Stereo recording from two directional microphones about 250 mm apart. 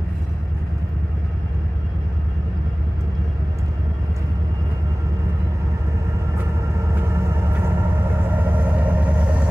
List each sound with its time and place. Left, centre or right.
8.3 s vehicle: centre